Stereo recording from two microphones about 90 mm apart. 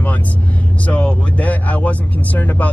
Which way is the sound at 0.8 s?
15° left (ahead or behind).